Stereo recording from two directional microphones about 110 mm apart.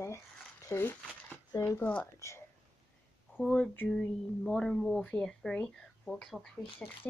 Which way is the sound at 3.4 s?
15° left (ahead or behind).